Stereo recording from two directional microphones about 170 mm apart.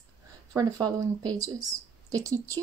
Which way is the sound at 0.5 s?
20° right (ahead or behind).